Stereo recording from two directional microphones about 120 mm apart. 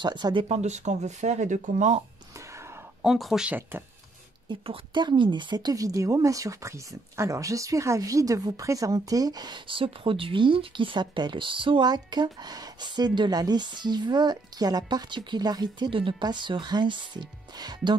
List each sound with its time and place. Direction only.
0.0 s speech: 40° right (ahead or behind)
0.5 s speech: 70° right (ahead or behind)
2.3 s music: 25° right (ahead or behind)
3.0 s speech: centre (ahead or behind)
4.5 s speech: 45° right (ahead or behind)